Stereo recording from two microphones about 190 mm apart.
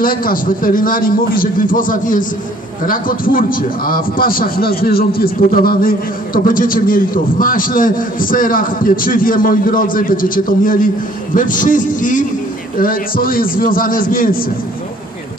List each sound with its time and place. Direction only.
0.0 s a man's voice: 50° left (ahead or behind)